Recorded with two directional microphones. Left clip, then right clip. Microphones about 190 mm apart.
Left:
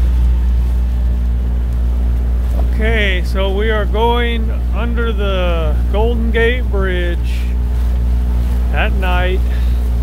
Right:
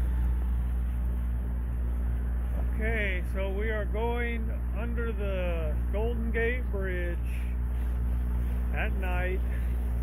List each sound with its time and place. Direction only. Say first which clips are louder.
2.8 s speech: left 15 dB; 20° left (ahead or behind)
8.7 s speech: left 16 dB; 20° left (ahead or behind)